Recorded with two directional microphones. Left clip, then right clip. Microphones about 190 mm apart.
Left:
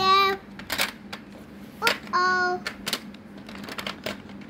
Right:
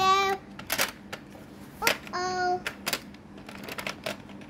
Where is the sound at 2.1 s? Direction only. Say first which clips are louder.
Left 6 dB; 15° left (ahead or behind).